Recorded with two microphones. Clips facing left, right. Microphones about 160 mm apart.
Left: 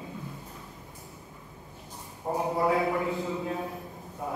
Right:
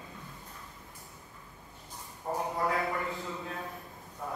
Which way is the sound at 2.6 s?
15° left (ahead or behind).